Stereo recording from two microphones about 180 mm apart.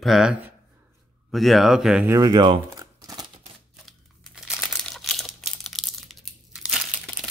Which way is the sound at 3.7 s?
Centre (ahead or behind).